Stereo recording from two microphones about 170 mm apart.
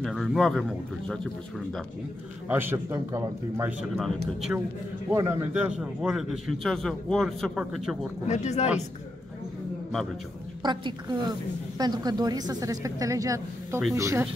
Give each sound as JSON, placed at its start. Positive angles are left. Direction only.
{"t": 0.0, "sound": "a man's voice", "side_deg": 0}
{"t": 2.4, "sound": "a man's voice", "side_deg": -10}
{"t": 3.9, "sound": "a man's voice", "side_deg": 0}
{"t": 5.1, "sound": "a man's voice", "side_deg": -15}
{"t": 8.3, "sound": "speech", "side_deg": 40}
{"t": 10.6, "sound": "a woman's voice", "side_deg": -25}